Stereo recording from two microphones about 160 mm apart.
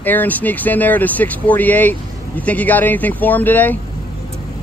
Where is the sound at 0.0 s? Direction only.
10° left (ahead or behind).